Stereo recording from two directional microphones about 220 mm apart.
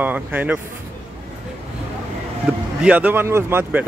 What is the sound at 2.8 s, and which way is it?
Speech, 5° right (ahead or behind).